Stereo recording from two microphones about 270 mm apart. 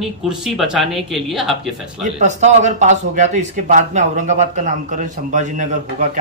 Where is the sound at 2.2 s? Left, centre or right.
Right.